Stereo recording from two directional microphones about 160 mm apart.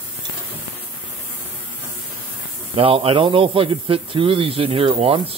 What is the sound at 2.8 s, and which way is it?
Speech, 35° right (ahead or behind).